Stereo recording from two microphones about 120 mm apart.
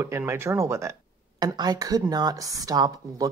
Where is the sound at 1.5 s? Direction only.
35° right (ahead or behind).